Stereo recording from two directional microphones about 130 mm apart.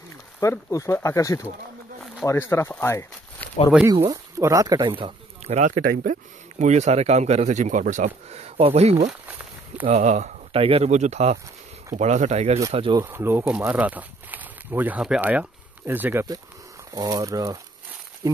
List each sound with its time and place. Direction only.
0.4 s speech: 25° left (ahead or behind)
3.9 s speech: 35° right (ahead or behind)
5.5 s speech: 80° right; by 8.9 s 50° right (ahead or behind)
9.8 s speech: 65° right (ahead or behind)
10.5 s speech: 50° right (ahead or behind)
13.0 s speech: 15° right (ahead or behind)
16.9 s speech: 30° right (ahead or behind)